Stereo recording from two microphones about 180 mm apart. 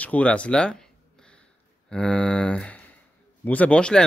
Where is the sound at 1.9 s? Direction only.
5° left (ahead or behind).